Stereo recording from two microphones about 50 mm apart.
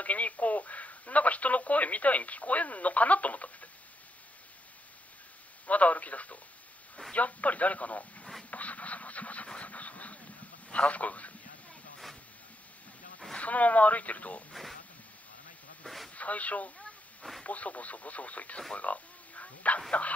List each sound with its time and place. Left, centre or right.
0.0 s speech: left
5.7 s speech: left
8.5 s a sound: left
9.5 s vehicle: left
10.7 s a man's voice: left
13.4 s speech: left
14.5 s speech: centre
15.8 s radio: centre
16.2 s speech: left
18.8 s frog: left
19.9 s speech: left